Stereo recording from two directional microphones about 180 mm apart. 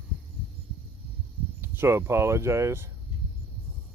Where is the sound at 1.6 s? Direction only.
15° right (ahead or behind).